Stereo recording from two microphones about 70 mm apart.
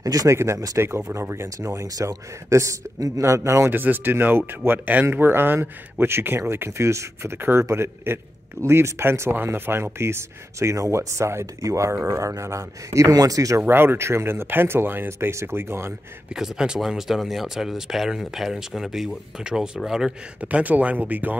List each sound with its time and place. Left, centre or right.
0.0 s speech: right
0.4 s speech: right
1.9 s speech: right
3.7 s speech: right
7.3 s speech: right
13.6 s speech: right
16.3 s speech: centre
20.3 s speech: right